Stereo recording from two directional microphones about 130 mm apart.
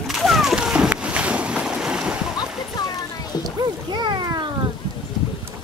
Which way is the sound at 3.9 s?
35° right (ahead or behind).